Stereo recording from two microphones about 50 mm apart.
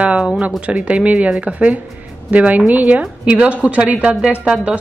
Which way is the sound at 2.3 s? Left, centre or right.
Right.